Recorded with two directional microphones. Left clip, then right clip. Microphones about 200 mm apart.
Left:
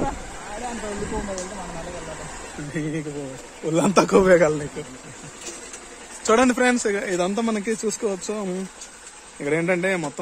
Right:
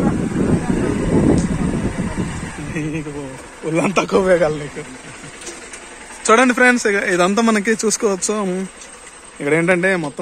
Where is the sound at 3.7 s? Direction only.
40° left (ahead or behind).